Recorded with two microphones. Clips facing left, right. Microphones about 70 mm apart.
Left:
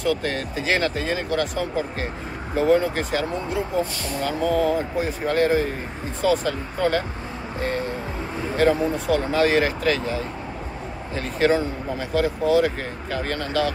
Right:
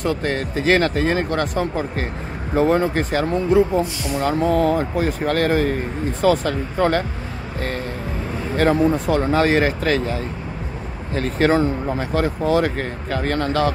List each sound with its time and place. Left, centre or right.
0.0 s speech: right
8.5 s speech: right